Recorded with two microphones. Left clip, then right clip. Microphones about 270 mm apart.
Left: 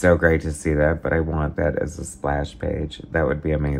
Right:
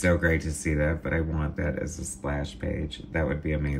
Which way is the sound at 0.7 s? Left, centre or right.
Left.